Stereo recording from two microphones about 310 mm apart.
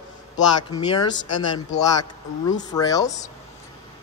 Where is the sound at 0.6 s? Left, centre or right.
Centre.